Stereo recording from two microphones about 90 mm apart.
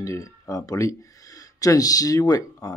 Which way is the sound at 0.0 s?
35° left (ahead or behind).